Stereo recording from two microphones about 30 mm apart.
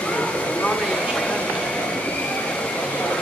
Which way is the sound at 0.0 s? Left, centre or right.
Left.